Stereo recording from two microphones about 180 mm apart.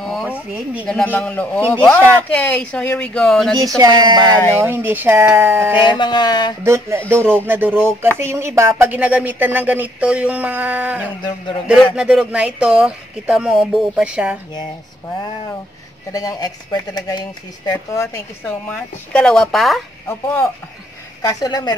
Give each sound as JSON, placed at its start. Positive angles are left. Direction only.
{"t": 0.0, "sound": "a sound", "side_deg": 0}
{"t": 0.8, "sound": "speech", "side_deg": 5}
{"t": 3.5, "sound": "speech", "side_deg": -20}
{"t": 5.8, "sound": "speech", "side_deg": 25}
{"t": 6.6, "sound": "speech", "side_deg": -15}
{"t": 16.1, "sound": "speech", "side_deg": 20}
{"t": 18.7, "sound": "speech", "side_deg": 5}
{"t": 20.1, "sound": "speech", "side_deg": 10}